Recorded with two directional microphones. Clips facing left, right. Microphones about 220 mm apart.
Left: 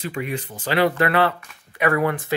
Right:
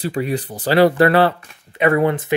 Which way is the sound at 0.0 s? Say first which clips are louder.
Right 6 dB; 35° right (ahead or behind).